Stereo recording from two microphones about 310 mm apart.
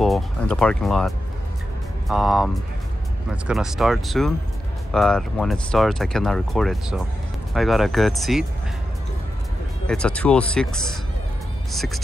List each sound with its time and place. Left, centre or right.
0.0 s speech: centre
9.8 s speech: centre